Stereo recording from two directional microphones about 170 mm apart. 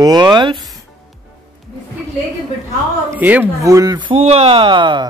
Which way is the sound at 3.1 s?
10° right (ahead or behind).